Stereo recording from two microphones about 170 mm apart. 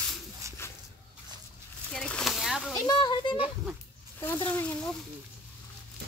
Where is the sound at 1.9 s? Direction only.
5° left (ahead or behind).